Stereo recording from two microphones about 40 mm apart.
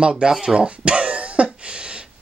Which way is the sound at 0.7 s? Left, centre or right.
Right.